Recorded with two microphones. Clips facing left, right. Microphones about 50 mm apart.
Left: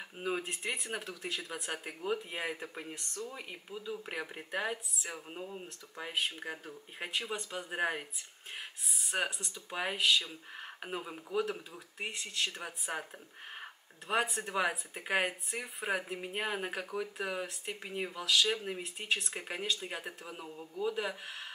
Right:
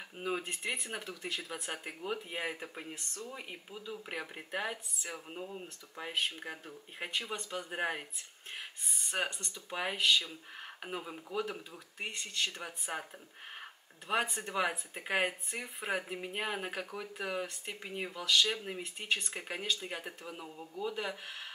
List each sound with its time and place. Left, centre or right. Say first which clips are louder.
0.2 s speech: left 1 dB; centre